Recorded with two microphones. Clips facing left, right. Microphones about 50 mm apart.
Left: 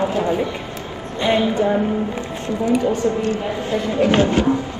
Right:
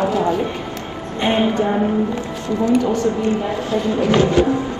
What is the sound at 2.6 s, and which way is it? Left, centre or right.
Speech, left.